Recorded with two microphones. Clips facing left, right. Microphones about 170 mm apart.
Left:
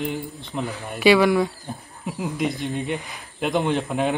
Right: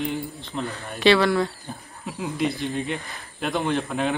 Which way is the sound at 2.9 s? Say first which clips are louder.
Left 2 dB; 15° left (ahead or behind).